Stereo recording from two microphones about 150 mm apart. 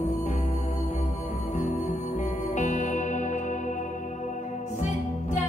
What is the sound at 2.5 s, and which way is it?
Music, 55° left (ahead or behind).